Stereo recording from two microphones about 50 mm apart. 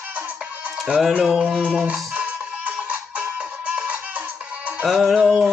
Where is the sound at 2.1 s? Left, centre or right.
Right.